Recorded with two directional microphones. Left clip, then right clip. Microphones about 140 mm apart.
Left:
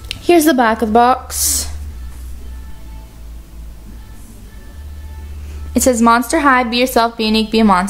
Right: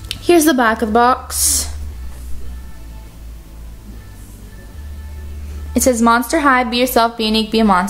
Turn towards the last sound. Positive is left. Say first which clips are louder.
# left 1 dB
turn(degrees=15)  # may be behind; listen again after turning